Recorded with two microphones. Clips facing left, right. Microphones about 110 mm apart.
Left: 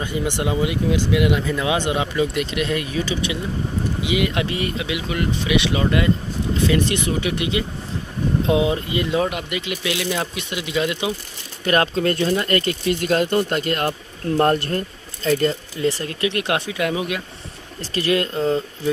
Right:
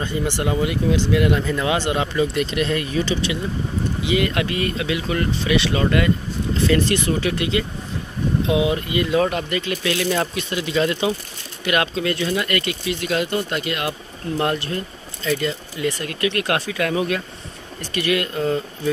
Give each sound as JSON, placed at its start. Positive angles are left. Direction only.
{"t": 0.0, "sound": "speech", "side_deg": 15}
{"t": 1.8, "sound": "speech", "side_deg": 20}
{"t": 2.1, "sound": "speech", "side_deg": 5}
{"t": 8.5, "sound": "speech", "side_deg": 30}
{"t": 9.2, "sound": "speech", "side_deg": 10}
{"t": 11.6, "sound": "speech", "side_deg": 35}
{"t": 15.8, "sound": "speech", "side_deg": 30}
{"t": 17.7, "sound": "speech", "side_deg": 30}